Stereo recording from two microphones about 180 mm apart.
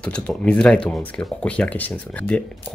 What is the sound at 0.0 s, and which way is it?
Speech, 5° left (ahead or behind).